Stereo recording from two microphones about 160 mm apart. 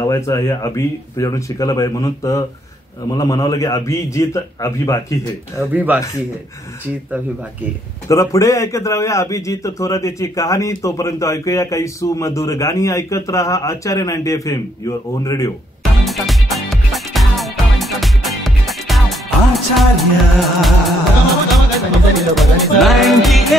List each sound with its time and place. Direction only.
0.0 s a man's voice: 20° left (ahead or behind)
5.6 s speech: 10° right (ahead or behind)
8.1 s a man's voice: 20° left (ahead or behind)
16.1 s music: centre (ahead or behind)